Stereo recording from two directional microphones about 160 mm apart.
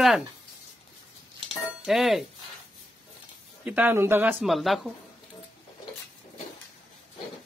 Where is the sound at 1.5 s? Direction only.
Centre (ahead or behind).